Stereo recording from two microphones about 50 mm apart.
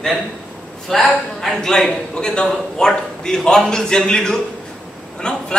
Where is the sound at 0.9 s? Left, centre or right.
Centre.